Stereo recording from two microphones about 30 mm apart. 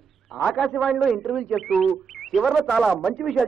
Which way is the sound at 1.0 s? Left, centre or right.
Centre.